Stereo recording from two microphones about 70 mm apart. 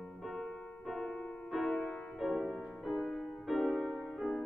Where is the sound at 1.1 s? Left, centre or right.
Centre.